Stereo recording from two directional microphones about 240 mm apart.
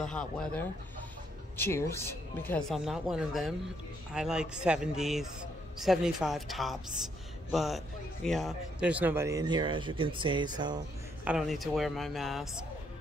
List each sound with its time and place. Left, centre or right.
0.0 s speech: centre
11.2 s speech: centre